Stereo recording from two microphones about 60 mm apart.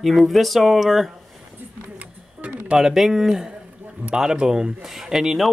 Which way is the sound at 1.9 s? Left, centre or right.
Right.